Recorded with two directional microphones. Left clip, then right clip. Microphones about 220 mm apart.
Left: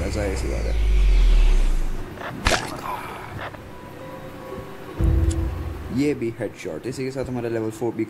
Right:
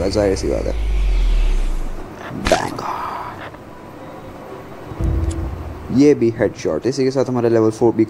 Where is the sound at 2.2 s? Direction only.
Centre (ahead or behind).